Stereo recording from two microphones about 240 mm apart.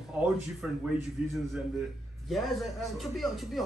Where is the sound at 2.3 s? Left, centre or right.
Centre.